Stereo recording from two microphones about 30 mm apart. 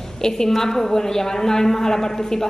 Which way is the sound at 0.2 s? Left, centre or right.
Left.